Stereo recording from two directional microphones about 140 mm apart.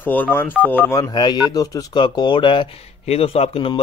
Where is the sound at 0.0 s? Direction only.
15° left (ahead or behind).